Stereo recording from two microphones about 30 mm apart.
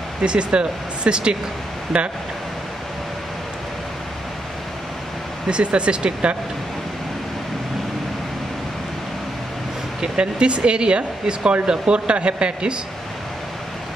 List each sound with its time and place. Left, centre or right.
0.2 s speech: right
5.5 s speech: right
10.1 s speech: right